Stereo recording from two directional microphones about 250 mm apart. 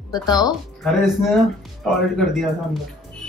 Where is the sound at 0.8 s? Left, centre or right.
Centre.